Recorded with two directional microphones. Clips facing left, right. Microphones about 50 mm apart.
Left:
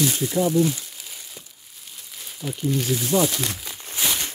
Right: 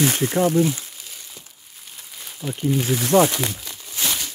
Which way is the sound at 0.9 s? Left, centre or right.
Centre.